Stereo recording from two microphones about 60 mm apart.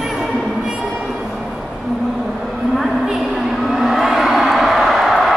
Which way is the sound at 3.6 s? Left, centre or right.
Centre.